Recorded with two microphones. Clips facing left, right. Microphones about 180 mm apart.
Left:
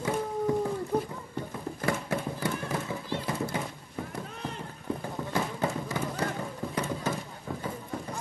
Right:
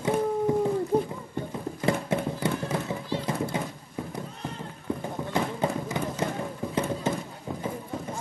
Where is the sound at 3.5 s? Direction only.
25° right (ahead or behind).